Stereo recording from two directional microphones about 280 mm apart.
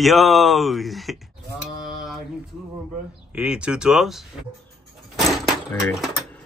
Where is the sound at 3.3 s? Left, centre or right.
Centre.